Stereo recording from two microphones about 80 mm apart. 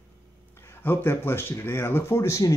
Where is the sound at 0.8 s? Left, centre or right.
Left.